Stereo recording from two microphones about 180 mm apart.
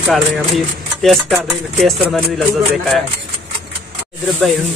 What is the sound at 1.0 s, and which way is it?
Speech, centre (ahead or behind).